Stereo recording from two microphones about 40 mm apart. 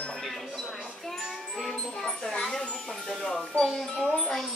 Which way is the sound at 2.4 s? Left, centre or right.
Left.